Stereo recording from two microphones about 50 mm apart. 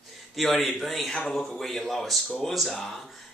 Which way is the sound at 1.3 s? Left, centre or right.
Centre.